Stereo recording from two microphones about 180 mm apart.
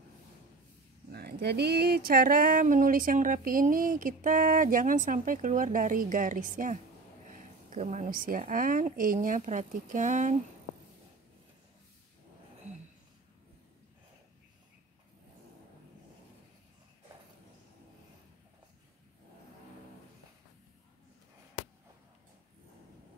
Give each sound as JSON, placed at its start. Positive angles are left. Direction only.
{"t": 1.1, "sound": "speech", "side_deg": -65}